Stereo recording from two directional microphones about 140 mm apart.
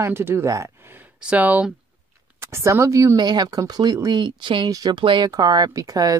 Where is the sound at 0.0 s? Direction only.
15° right (ahead or behind).